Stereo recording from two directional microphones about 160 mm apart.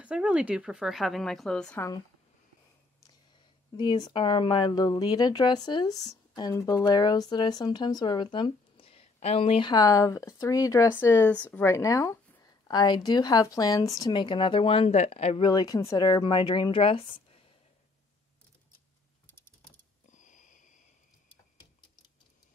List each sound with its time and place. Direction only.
0.0 s a woman's voice: 5° right (ahead or behind)
3.7 s speech: 30° left (ahead or behind)
20.1 s a sound: 50° left (ahead or behind)